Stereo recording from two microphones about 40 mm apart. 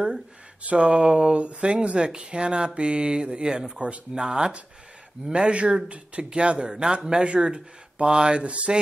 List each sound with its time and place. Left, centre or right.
0.7 s speech: right
5.3 s speech: right
8.5 s speech: right